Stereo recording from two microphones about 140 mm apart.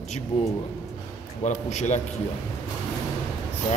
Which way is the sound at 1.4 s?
55° left (ahead or behind).